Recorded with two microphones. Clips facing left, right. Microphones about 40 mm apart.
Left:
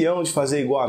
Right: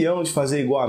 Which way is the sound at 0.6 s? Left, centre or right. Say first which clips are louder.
Right 1 dB; centre.